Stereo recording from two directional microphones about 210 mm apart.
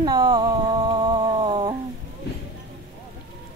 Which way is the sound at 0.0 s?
20° right (ahead or behind).